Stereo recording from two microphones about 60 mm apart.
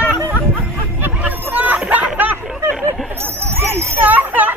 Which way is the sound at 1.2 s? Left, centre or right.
Right.